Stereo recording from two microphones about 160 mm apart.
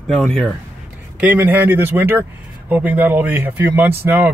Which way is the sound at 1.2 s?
10° right (ahead or behind).